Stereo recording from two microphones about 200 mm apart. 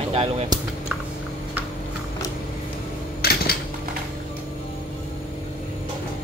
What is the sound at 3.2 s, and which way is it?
Typewriter, 50° left (ahead or behind).